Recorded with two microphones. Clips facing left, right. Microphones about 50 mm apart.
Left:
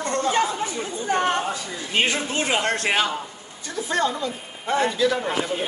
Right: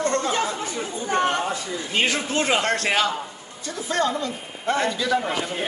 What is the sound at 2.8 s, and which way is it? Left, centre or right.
Speech, centre.